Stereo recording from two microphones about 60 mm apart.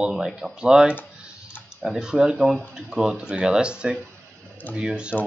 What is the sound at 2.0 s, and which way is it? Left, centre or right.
Speech, centre.